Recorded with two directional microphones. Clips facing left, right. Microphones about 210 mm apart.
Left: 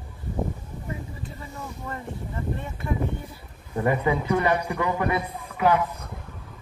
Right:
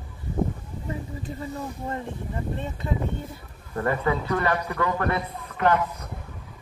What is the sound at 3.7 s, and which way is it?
A man's voice, 15° left (ahead or behind).